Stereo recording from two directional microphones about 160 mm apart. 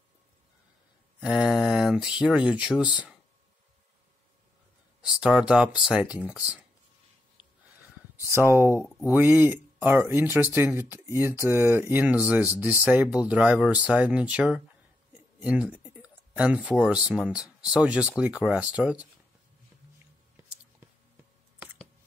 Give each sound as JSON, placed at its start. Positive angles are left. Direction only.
{"t": 1.2, "sound": "speech", "side_deg": -5}
{"t": 5.0, "sound": "speech", "side_deg": -5}
{"t": 8.4, "sound": "speech", "side_deg": -15}
{"t": 20.8, "sound": "clicking", "side_deg": -15}